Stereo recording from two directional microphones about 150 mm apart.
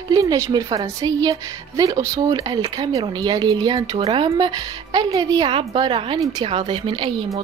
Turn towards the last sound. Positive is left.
turn(degrees=5)  # may be behind; listen again after turning